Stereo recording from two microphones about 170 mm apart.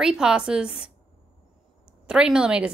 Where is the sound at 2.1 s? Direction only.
5° right (ahead or behind).